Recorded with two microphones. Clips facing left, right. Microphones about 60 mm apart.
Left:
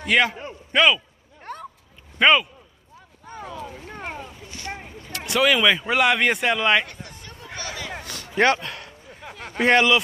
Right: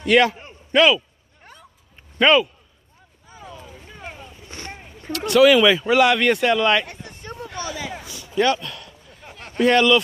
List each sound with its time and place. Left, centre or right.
0.0 s a man's voice: centre
1.4 s a sound: left
2.1 s a man's voice: centre
3.3 s vehicle: left
4.5 s boat: right
5.3 s a man's voice: centre
7.3 s a sound: right
8.1 s a sound: left
9.6 s speech: left